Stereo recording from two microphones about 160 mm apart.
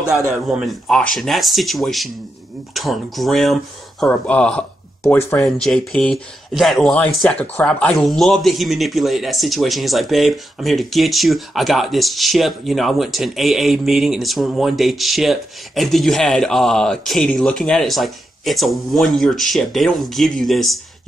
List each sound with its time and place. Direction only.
0.1 s speech: 5° right (ahead or behind); by 5.4 s 15° left (ahead or behind)
5.4 s speech: 5° left (ahead or behind)